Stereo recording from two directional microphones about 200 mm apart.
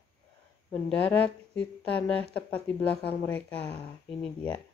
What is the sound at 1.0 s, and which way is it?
A woman's voice, 5° left (ahead or behind).